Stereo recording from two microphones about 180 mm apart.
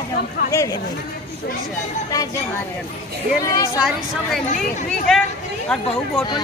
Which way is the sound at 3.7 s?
5° right (ahead or behind).